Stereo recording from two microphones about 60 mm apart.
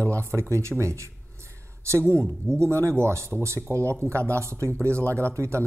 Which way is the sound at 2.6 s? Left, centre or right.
Right.